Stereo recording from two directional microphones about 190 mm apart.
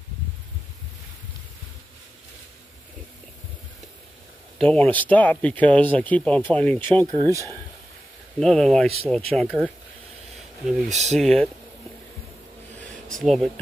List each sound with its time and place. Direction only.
4.6 s speech: 5° left (ahead or behind)
7.1 s speech: 15° right (ahead or behind)
8.4 s speech: 5° left (ahead or behind)
10.9 s speech: 35° right (ahead or behind)
11.1 s speech: 5° left (ahead or behind)
13.1 s speech: centre (ahead or behind)